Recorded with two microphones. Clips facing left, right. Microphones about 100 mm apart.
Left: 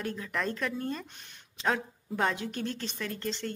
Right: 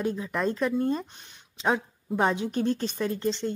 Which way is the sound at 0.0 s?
20° right (ahead or behind).